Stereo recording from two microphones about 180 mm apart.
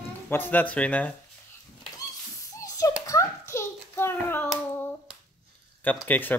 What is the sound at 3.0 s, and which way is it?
Hands, 15° left (ahead or behind).